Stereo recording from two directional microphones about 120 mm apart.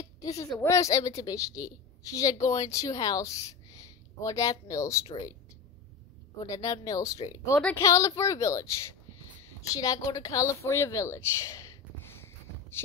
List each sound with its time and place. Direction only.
0.2 s a sound: 30° left (ahead or behind)
0.7 s a woman's voice: 25° left (ahead or behind)
6.4 s a woman's voice: 30° left (ahead or behind)